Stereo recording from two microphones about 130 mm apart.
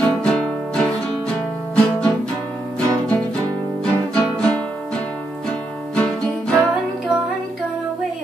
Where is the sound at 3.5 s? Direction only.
25° right (ahead or behind).